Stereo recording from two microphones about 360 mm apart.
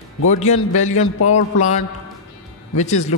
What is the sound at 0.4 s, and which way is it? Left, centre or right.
A man's voice, centre.